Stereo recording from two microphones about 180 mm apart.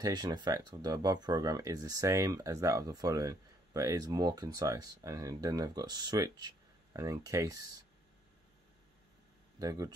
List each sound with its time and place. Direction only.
0.0 s speech: 20° right (ahead or behind)
9.6 s speech: 20° right (ahead or behind)